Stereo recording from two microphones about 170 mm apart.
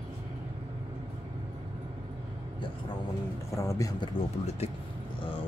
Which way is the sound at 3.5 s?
15° left (ahead or behind).